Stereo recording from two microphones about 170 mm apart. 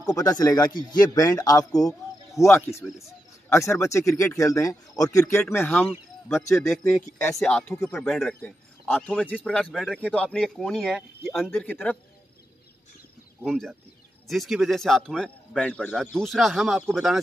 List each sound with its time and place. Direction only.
0.0 s a man's voice: 20° left (ahead or behind)
6.7 s speech: 5° left (ahead or behind)
13.4 s speech: centre (ahead or behind)